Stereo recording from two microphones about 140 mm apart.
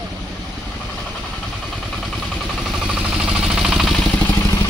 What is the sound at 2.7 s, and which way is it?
Vehicle, centre (ahead or behind).